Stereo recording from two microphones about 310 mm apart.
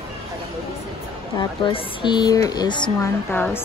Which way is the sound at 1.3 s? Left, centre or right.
Centre.